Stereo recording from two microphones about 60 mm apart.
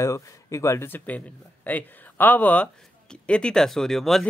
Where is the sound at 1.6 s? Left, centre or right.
Left.